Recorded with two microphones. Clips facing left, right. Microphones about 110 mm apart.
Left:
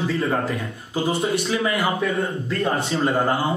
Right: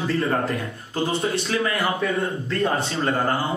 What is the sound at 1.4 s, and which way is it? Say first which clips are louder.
Speech: left 1 dB; 20° left (ahead or behind).